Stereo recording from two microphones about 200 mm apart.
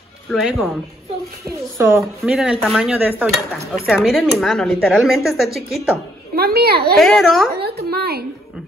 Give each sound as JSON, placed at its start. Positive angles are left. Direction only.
{"t": 0.3, "sound": "speech", "side_deg": 0}
{"t": 1.8, "sound": "dishes", "side_deg": -10}
{"t": 2.6, "sound": "speech", "side_deg": 0}
{"t": 2.9, "sound": "dishes", "side_deg": -10}
{"t": 3.8, "sound": "speech", "side_deg": 0}
{"t": 6.3, "sound": "a woman's voice", "side_deg": -50}
{"t": 7.0, "sound": "speech", "side_deg": 0}
{"t": 7.5, "sound": "a woman's voice", "side_deg": -50}